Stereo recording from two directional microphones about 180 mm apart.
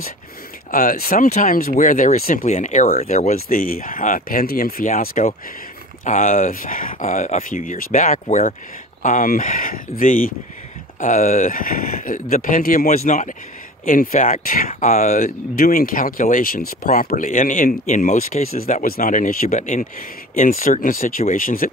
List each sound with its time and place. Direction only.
0.7 s speech: 50° left (ahead or behind)